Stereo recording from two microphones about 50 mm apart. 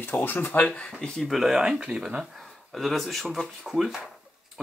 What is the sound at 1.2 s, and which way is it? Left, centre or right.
Speech, centre.